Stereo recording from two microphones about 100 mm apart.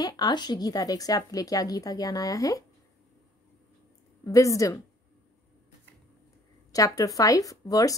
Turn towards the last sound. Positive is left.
turn(degrees=35)  # may be behind; listen again after turning